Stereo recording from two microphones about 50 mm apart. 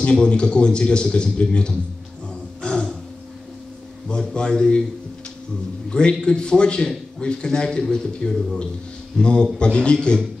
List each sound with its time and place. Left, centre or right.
0.0 s speech: centre
2.6 s a sound: centre
4.3 s a man's voice: centre
5.9 s a man's voice: centre